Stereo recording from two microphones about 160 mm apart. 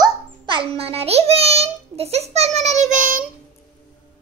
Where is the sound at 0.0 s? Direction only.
30° right (ahead or behind); by 3.2 s 50° right (ahead or behind).